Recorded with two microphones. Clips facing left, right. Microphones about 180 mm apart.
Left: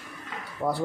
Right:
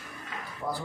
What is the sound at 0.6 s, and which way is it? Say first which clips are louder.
Speech: left 6 dB; 60° left (ahead or behind).